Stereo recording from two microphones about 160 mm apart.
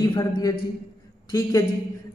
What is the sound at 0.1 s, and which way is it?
Speech, 25° left (ahead or behind).